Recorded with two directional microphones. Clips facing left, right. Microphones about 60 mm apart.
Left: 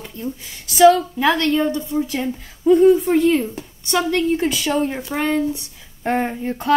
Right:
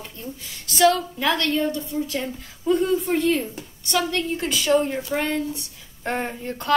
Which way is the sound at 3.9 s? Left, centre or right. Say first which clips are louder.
Left 5 dB; centre.